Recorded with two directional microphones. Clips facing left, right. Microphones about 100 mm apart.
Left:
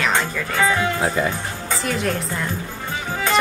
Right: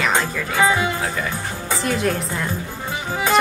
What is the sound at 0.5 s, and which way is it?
Speech, 10° right (ahead or behind).